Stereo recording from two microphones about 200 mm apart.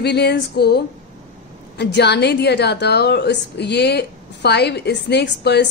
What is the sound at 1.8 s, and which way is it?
A woman's voice, 60° left (ahead or behind).